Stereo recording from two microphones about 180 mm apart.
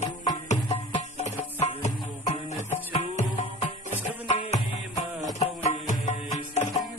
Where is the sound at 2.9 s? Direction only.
35° left (ahead or behind).